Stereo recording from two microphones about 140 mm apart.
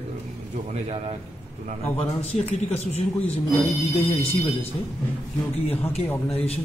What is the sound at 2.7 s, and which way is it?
Speech, 50° left (ahead or behind).